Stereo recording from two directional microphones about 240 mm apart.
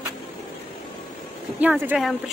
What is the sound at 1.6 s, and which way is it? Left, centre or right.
Speech, centre.